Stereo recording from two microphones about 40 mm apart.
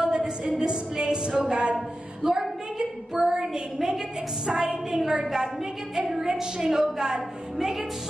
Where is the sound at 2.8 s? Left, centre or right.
Centre.